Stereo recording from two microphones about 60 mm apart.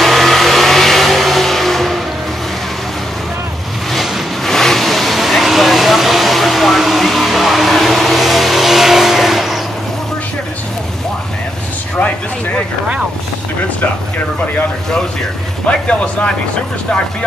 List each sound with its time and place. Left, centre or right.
0.0 s vehicle: centre
3.9 s vehicle: centre
15.6 s vehicle: centre